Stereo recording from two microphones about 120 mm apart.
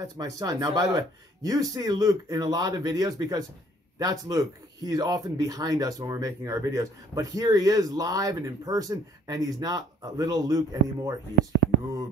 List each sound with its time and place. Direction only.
0.0 s speech: 30° right (ahead or behind)